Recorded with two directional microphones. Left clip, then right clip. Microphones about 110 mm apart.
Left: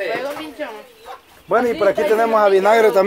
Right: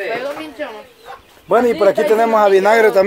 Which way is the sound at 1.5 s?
45° right (ahead or behind).